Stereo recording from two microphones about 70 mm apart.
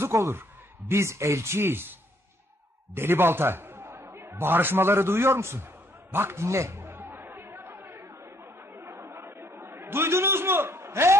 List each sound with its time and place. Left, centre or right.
0.0 s a man's voice: right
6.9 s chatter: right
8.7 s a sound: right